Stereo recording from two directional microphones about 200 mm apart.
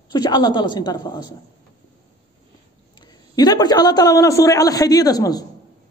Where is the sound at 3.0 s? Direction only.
20° left (ahead or behind).